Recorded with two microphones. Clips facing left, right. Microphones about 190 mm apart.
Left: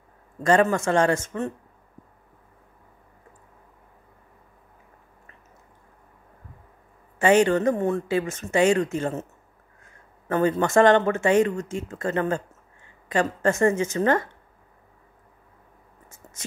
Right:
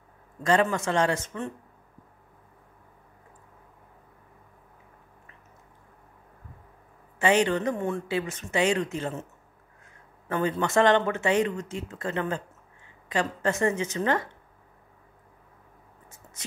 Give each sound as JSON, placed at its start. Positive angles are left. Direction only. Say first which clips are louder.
{"t": 0.4, "sound": "speech", "louder": "left 4 dB", "side_deg": 50}
{"t": 7.2, "sound": "speech", "louder": "left 5 dB", "side_deg": 50}
{"t": 10.2, "sound": "speech", "louder": "left 5 dB", "side_deg": 45}
{"t": 16.1, "sound": "a sound", "louder": "left 3 dB", "side_deg": 45}